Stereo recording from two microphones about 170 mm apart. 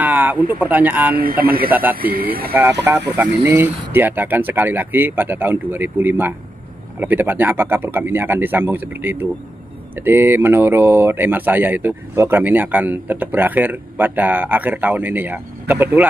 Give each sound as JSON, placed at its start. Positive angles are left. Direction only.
{"t": 0.0, "sound": "a sound", "side_deg": -10}
{"t": 0.5, "sound": "speech", "side_deg": -10}
{"t": 1.2, "sound": "speech", "side_deg": -60}
{"t": 1.7, "sound": "speech", "side_deg": -10}
{"t": 2.0, "sound": "speech", "side_deg": -60}
{"t": 2.5, "sound": "speech", "side_deg": -10}